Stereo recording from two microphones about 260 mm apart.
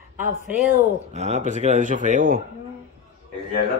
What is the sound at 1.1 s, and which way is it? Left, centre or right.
Speech, right.